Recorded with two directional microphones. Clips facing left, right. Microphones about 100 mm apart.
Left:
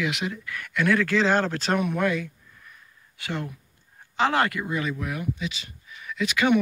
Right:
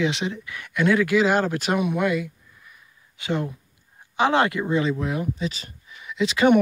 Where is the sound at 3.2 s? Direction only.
20° right (ahead or behind); by 5.7 s 40° right (ahead or behind).